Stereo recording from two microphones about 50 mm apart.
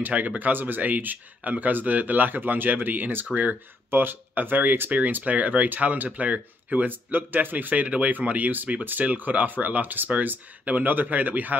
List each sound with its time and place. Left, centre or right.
0.0 s speech: right